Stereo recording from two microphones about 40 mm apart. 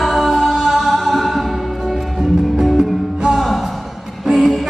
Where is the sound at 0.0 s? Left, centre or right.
Centre.